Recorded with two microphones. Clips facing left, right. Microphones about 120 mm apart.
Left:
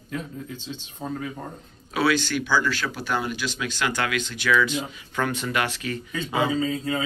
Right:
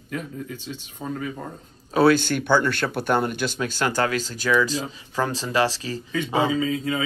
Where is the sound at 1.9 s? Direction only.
45° right (ahead or behind); by 6.5 s 30° right (ahead or behind).